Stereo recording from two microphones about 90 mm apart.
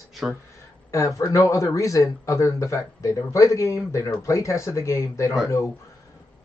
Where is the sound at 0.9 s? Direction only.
35° left (ahead or behind).